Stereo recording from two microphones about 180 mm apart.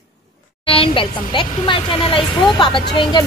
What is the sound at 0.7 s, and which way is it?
Speech, 30° left (ahead or behind).